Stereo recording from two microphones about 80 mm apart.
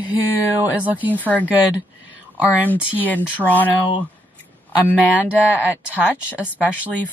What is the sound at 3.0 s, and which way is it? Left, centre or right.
Speech, left.